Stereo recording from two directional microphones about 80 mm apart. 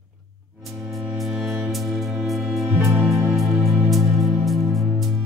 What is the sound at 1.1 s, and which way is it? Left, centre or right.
Music, centre.